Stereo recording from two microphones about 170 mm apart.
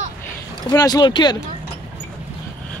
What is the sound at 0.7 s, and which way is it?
Speech, 25° left (ahead or behind).